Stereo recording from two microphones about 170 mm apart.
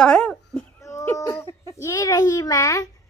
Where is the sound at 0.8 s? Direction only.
15° left (ahead or behind).